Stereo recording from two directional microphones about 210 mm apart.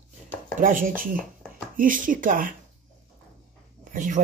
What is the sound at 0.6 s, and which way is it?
Speech, 40° right (ahead or behind).